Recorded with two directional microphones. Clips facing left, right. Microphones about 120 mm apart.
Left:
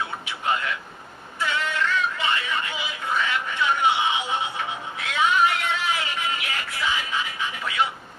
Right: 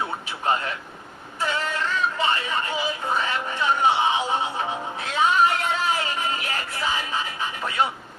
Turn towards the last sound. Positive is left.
turn(degrees=-40)  # may be behind; listen again after turning